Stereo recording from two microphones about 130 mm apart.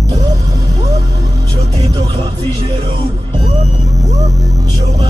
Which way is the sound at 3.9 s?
25° right (ahead or behind).